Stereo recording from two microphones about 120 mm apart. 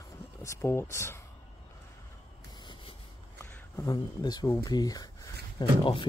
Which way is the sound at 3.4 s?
20° left (ahead or behind).